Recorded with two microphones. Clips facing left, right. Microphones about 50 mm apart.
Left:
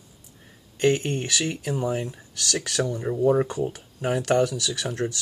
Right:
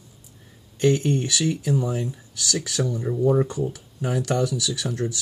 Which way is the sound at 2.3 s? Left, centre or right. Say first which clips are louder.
Right 1 dB; left.